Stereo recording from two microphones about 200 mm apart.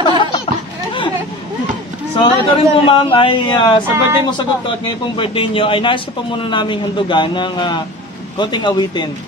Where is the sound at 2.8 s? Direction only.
25° left (ahead or behind).